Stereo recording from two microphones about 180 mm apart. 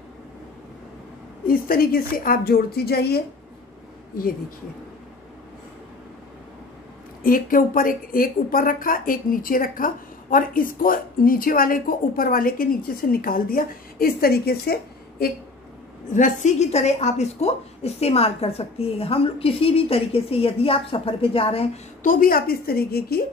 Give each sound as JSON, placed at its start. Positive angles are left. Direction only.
{"t": 1.4, "sound": "a woman's voice", "side_deg": 55}
{"t": 7.2, "sound": "speech", "side_deg": 50}
{"t": 16.1, "sound": "a woman's voice", "side_deg": 45}
{"t": 22.0, "sound": "a woman's voice", "side_deg": 50}